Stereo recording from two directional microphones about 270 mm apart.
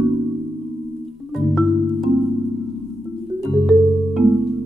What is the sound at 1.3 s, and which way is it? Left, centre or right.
Music, centre.